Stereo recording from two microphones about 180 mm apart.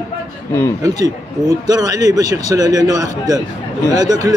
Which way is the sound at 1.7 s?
20° right (ahead or behind).